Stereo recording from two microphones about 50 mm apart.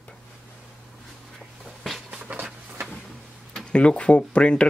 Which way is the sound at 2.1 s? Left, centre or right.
Right.